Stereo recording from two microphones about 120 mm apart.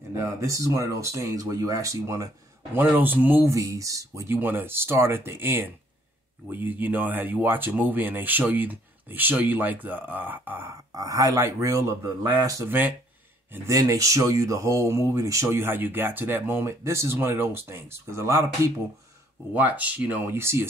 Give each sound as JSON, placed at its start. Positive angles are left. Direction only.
{"t": 0.1, "sound": "speech", "side_deg": -25}
{"t": 2.7, "sound": "speech", "side_deg": -15}
{"t": 3.5, "sound": "speech", "side_deg": -30}
{"t": 10.7, "sound": "speech", "side_deg": -30}
{"t": 12.6, "sound": "speech", "side_deg": -15}
{"t": 13.7, "sound": "speech", "side_deg": -25}
{"t": 19.5, "sound": "speech", "side_deg": -15}